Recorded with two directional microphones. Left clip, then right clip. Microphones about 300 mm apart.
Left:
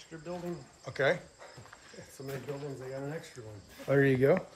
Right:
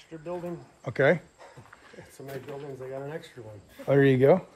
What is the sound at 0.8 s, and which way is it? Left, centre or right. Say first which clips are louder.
Speech: right 6 dB; right.